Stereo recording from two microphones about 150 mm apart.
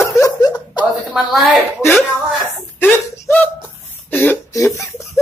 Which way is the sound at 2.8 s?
15° left (ahead or behind).